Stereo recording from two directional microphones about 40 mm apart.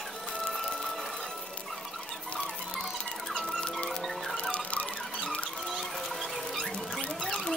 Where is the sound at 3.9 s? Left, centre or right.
Centre.